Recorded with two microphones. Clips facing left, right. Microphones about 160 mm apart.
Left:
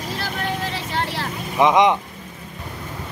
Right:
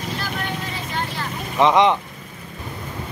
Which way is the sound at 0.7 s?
80° left.